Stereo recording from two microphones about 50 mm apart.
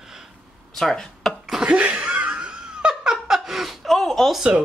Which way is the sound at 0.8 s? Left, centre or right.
Centre.